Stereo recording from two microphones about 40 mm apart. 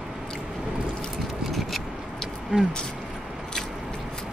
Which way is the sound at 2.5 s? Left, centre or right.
Right.